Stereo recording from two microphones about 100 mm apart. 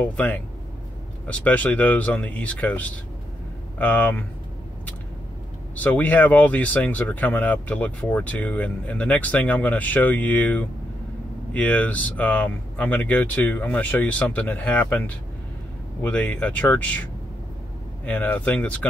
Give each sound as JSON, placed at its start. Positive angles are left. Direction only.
{"t": 0.0, "sound": "speech", "side_deg": 15}
{"t": 5.8, "sound": "speech", "side_deg": 15}
{"t": 18.0, "sound": "speech", "side_deg": 20}